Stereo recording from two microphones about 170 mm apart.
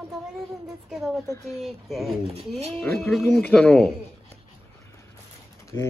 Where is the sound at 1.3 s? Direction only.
15° left (ahead or behind).